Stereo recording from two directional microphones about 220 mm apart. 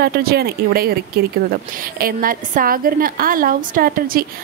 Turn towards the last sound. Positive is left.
turn(degrees=-40)  # may be behind; listen again after turning